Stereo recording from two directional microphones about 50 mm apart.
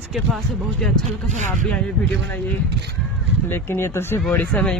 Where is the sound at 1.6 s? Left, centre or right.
Centre.